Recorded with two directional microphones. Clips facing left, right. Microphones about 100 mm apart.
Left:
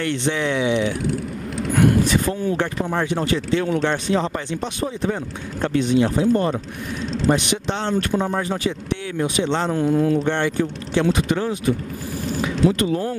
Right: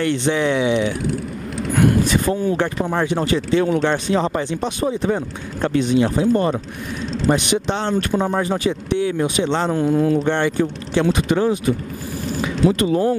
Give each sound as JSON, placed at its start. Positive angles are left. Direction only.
{"t": 0.0, "sound": "speech", "side_deg": -10}
{"t": 2.0, "sound": "speech", "side_deg": -15}
{"t": 8.1, "sound": "speech", "side_deg": -25}
{"t": 8.4, "sound": "speech", "side_deg": -15}